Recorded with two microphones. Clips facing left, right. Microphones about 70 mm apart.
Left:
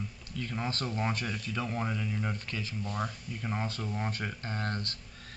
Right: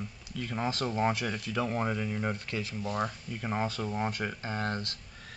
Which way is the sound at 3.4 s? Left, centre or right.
Right.